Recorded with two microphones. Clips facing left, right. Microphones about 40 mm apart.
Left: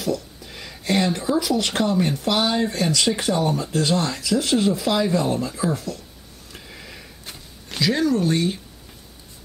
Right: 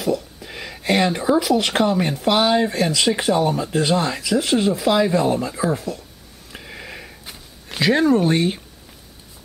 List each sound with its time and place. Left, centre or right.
0.0 s speech: centre
6.5 s sniff: right
7.8 s speech: right